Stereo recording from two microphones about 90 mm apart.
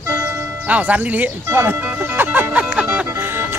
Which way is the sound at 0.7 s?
15° right (ahead or behind).